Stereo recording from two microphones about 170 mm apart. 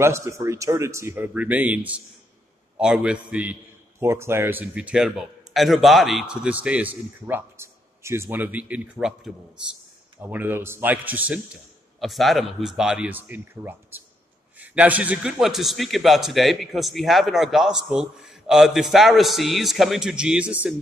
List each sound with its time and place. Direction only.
0.0 s a man's voice: 15° right (ahead or behind)